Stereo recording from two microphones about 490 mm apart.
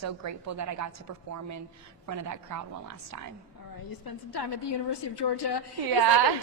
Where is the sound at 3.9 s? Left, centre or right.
Left.